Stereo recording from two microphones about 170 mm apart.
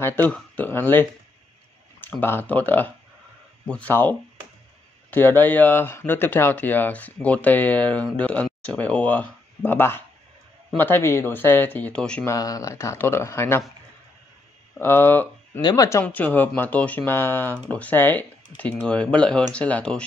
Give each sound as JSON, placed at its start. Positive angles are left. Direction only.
{"t": 0.0, "sound": "speech", "side_deg": 10}
{"t": 12.3, "sound": "speech", "side_deg": 20}
{"t": 14.8, "sound": "speech", "side_deg": 15}